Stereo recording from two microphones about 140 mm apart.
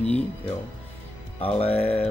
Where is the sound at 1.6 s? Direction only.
45° left (ahead or behind).